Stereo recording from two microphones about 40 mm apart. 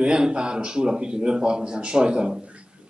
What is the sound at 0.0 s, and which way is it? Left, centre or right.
Speech, right.